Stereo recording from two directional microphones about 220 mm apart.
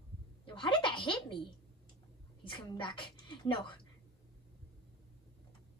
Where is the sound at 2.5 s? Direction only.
20° left (ahead or behind).